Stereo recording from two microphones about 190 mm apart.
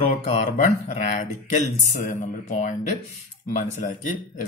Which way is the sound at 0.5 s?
40° left (ahead or behind).